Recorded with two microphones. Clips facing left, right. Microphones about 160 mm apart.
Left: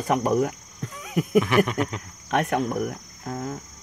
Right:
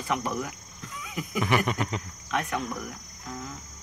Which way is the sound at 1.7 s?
Centre (ahead or behind).